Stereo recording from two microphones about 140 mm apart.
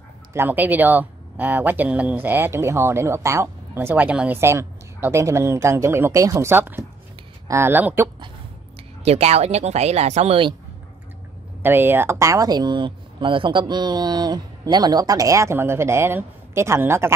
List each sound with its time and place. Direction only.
0.3 s speech: 15° right (ahead or behind)
9.0 s speech: 50° right (ahead or behind)
11.6 s speech: 15° right (ahead or behind)